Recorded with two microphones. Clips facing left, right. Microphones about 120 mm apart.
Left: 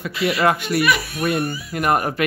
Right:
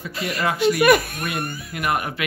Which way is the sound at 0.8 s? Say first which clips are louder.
Right 3 dB; 50° right (ahead or behind).